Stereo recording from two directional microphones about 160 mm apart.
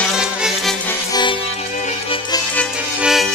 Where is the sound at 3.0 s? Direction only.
5° right (ahead or behind).